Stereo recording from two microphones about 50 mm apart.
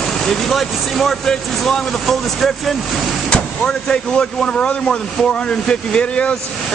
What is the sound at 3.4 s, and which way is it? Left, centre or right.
Speech, centre.